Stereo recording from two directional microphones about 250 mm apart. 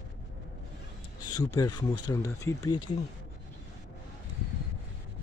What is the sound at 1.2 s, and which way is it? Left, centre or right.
Speech, centre.